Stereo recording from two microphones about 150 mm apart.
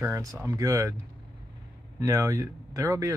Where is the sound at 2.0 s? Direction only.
20° right (ahead or behind).